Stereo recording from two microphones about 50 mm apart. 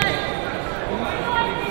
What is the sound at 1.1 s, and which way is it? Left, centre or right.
Chatter, centre.